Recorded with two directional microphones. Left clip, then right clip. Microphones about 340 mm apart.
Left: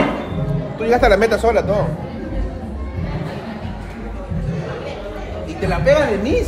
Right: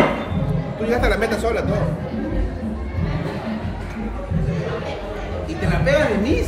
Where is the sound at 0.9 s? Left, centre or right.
Left.